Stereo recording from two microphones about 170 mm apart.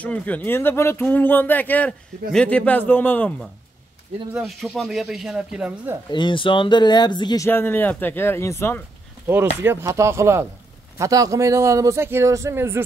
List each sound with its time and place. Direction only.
0.0 s speech: 10° left (ahead or behind)
4.3 s speech: centre (ahead or behind)
6.1 s speech: 30° left (ahead or behind)
7.4 s speech: 10° left (ahead or behind)
9.6 s a man's voice: 15° right (ahead or behind)